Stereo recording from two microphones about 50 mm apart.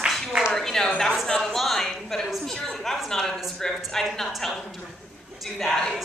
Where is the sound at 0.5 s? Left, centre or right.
Centre.